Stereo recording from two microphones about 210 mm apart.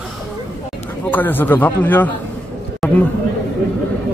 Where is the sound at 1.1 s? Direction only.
10° left (ahead or behind).